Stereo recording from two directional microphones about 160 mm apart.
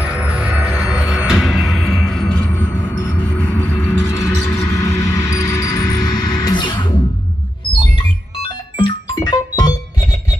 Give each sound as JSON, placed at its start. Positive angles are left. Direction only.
{"t": 0.0, "sound": "music", "side_deg": -5}
{"t": 8.4, "sound": "music", "side_deg": 30}